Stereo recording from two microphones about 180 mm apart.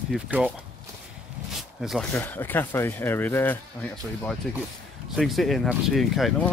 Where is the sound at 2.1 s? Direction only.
10° left (ahead or behind).